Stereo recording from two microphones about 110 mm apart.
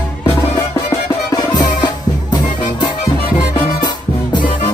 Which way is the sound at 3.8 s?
45° left (ahead or behind).